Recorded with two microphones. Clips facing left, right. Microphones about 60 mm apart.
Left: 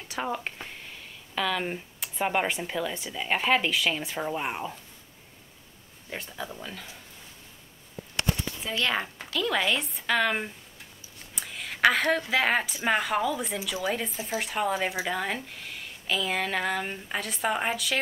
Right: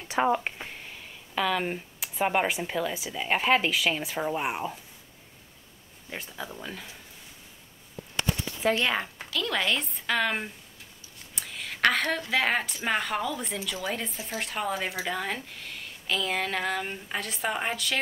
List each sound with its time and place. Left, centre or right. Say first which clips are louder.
0.3 s speech: right 5 dB; centre
6.1 s speech: left 1 dB; centre
8.6 s speech: right 10 dB; right
9.3 s speech: left 2 dB; centre